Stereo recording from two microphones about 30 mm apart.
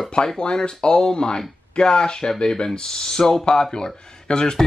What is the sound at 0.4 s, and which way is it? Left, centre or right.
Speech, left.